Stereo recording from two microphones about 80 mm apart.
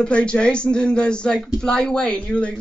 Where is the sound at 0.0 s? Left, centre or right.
Centre.